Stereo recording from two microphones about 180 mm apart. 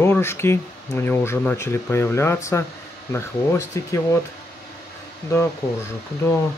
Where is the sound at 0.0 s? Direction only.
15° left (ahead or behind).